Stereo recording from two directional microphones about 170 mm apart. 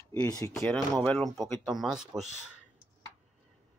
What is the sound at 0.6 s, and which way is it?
Speech, 10° left (ahead or behind).